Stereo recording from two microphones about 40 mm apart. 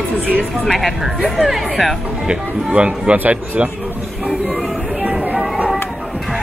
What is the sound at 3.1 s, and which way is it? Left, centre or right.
Speech, right.